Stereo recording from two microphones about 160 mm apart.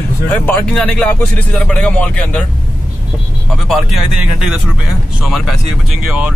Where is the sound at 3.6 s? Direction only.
Centre (ahead or behind).